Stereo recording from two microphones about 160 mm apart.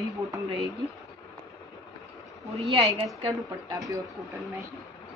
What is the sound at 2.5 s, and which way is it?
Speech, 40° right (ahead or behind).